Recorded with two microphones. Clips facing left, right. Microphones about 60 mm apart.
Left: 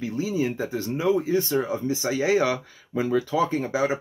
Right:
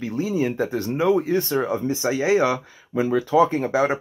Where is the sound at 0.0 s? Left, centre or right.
Right.